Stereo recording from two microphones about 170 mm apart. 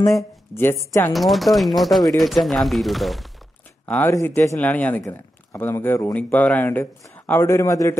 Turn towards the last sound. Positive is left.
turn(degrees=15)  # may be behind; listen again after turning